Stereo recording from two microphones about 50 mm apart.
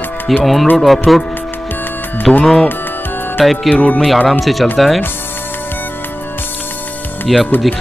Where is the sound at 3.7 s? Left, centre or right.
Left.